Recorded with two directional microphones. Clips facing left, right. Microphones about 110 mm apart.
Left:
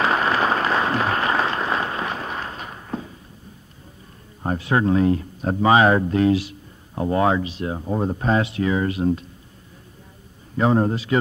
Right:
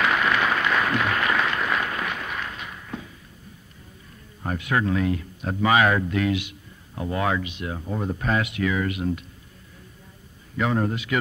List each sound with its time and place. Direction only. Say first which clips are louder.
0.0 s applause: left 2 dB; 35° left (ahead or behind)
4.4 s speech: left 4 dB; 30° left (ahead or behind)
10.6 s speech: left 5 dB; 30° left (ahead or behind)